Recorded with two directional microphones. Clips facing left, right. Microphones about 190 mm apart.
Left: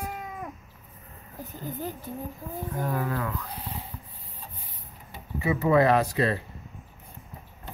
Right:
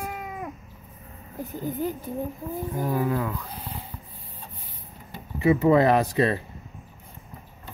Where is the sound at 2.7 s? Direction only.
10° right (ahead or behind).